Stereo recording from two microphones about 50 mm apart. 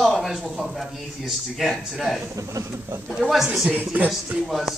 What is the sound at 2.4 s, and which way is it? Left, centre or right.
Speech, right.